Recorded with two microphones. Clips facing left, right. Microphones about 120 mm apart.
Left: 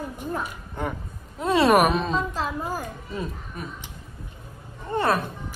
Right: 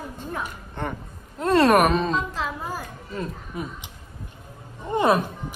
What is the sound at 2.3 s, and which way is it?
Speech, 40° left (ahead or behind).